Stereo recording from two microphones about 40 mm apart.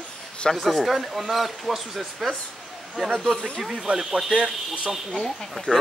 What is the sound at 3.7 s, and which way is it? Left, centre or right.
Speech, centre.